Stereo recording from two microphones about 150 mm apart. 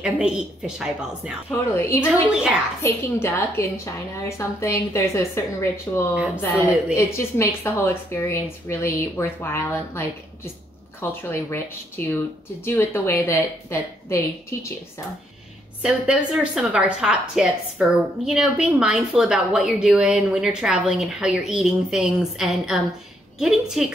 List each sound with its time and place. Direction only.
0.0 s a woman's voice: 5° right (ahead or behind)
1.8 s a woman's voice: 15° left (ahead or behind)
2.0 s a woman's voice: 5° right (ahead or behind)
2.8 s a woman's voice: 15° left (ahead or behind)
6.1 s speech: 10° right (ahead or behind)
6.4 s a woman's voice: 10° left (ahead or behind)
12.6 s a woman's voice: 15° left (ahead or behind)
15.8 s a woman's voice: 5° right (ahead or behind)